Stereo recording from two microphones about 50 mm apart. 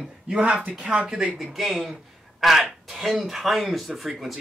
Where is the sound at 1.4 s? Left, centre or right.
Centre.